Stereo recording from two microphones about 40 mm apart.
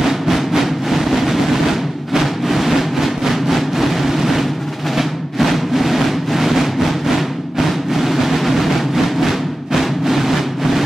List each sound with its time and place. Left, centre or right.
0.0 s music: centre